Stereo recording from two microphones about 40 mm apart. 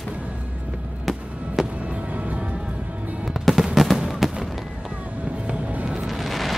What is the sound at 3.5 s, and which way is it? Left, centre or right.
Fireworks, centre.